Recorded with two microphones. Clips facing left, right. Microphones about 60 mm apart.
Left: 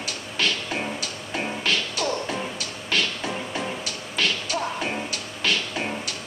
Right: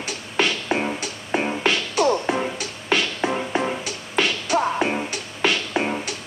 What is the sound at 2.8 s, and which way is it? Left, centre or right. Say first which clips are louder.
Music: right 5 dB; right.